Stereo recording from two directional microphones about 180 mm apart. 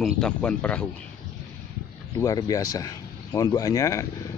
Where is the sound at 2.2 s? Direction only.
20° left (ahead or behind).